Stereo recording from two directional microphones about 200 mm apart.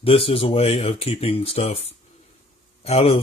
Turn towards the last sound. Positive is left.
turn(degrees=30)  # may be behind; listen again after turning